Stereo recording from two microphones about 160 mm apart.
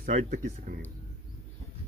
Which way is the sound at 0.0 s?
55° right (ahead or behind).